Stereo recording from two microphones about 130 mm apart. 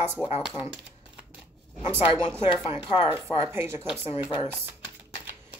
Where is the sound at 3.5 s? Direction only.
20° right (ahead or behind).